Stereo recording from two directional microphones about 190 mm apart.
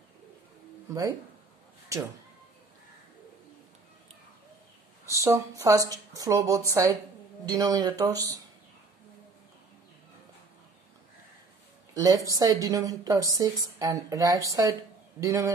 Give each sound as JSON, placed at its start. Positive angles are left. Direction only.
{"t": 0.8, "sound": "speech", "side_deg": -20}
{"t": 5.2, "sound": "a woman's voice", "side_deg": -15}
{"t": 11.9, "sound": "a woman's voice", "side_deg": -20}